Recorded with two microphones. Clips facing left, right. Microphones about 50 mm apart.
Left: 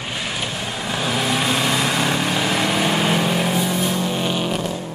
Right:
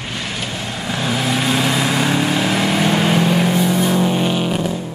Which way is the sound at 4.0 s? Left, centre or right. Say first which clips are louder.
Right 5 dB; centre.